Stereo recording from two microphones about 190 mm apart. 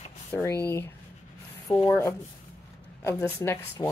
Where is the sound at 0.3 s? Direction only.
15° left (ahead or behind).